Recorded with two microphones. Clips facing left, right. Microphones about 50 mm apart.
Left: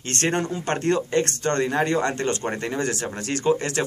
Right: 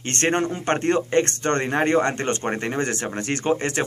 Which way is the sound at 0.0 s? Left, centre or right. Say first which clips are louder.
Right 2 dB; right.